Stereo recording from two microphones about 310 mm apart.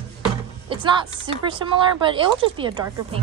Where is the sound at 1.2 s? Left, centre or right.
Centre.